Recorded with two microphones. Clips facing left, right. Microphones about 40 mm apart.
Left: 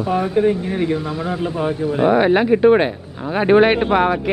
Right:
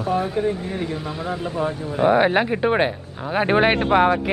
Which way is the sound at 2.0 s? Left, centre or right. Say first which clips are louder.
Left 2 dB; centre.